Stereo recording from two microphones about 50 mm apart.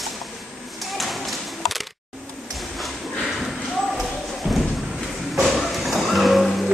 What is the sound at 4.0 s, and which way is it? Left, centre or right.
Clip-clop, centre.